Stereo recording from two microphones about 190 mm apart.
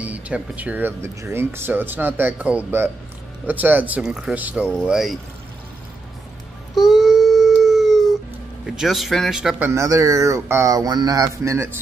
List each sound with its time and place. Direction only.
0.0 s speech: 10° right (ahead or behind)
6.7 s a sound: centre (ahead or behind)
8.6 s a man's voice: centre (ahead or behind)
9.7 s speech: 15° right (ahead or behind)